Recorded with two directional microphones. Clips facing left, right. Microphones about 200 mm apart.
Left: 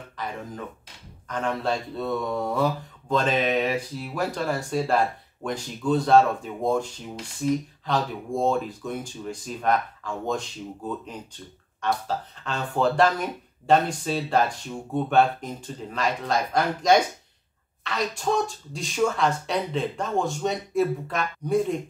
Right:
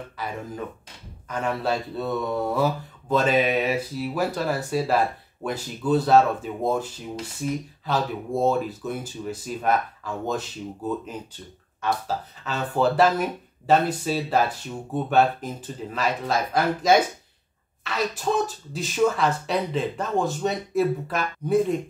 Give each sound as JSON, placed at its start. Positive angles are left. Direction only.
{"t": 0.2, "sound": "speech", "side_deg": -5}